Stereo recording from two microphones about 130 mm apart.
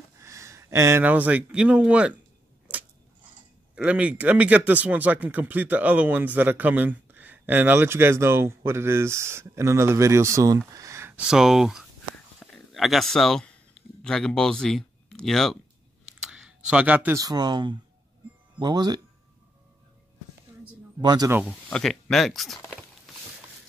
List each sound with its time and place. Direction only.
0.2 s speech: 25° right (ahead or behind)
3.7 s speech: 10° right (ahead or behind)
10.7 s a sound: 25° right (ahead or behind)
11.2 s speech: 5° right (ahead or behind)
12.4 s a sound: 5° left (ahead or behind)
14.0 s speech: 5° left (ahead or behind)
16.1 s clicking: 5° right (ahead or behind)
17.2 s speech: 30° right (ahead or behind)
21.0 s speech: 35° right (ahead or behind)
21.6 s speech: 10° left (ahead or behind)